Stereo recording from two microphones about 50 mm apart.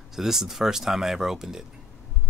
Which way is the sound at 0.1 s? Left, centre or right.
Centre.